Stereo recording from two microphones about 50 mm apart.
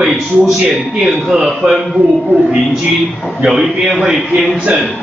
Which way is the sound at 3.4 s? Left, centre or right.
Centre.